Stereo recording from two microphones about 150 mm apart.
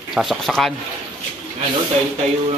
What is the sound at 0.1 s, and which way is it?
Speech, centre (ahead or behind).